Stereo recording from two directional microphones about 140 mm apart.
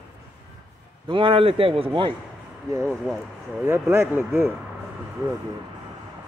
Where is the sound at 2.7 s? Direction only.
20° right (ahead or behind).